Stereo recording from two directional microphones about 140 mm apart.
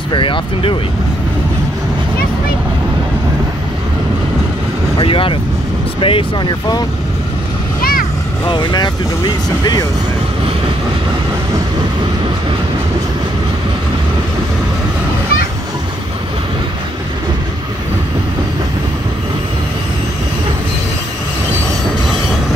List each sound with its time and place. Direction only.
0.1 s speech: 35° left (ahead or behind)
4.9 s speech: 40° left (ahead or behind)
8.5 s speech: 35° left (ahead or behind)